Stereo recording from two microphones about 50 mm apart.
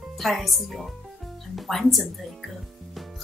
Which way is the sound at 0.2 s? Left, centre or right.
Centre.